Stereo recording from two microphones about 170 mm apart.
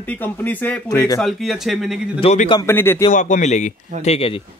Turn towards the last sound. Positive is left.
turn(degrees=35)  # may be behind; listen again after turning